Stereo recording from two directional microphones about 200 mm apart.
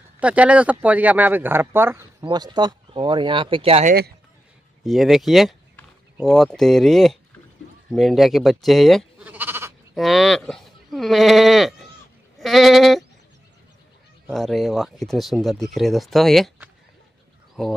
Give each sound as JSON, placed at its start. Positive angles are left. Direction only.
{"t": 0.2, "sound": "speech", "side_deg": -5}
{"t": 4.8, "sound": "speech", "side_deg": 0}
{"t": 9.9, "sound": "speech", "side_deg": 0}
{"t": 12.4, "sound": "bleat", "side_deg": 0}
{"t": 14.2, "sound": "speech", "side_deg": 0}